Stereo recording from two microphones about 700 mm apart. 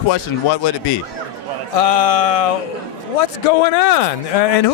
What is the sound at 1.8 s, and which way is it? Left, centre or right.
A man's voice, left.